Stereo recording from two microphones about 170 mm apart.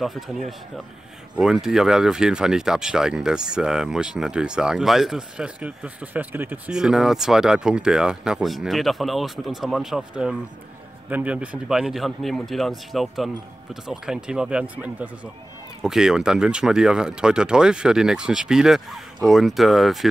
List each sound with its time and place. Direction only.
0.0 s speech: centre (ahead or behind)